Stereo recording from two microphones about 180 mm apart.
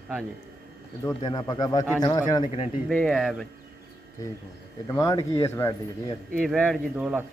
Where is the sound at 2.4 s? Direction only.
40° left (ahead or behind).